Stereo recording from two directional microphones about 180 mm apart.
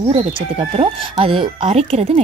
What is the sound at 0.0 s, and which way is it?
Speech, 30° right (ahead or behind).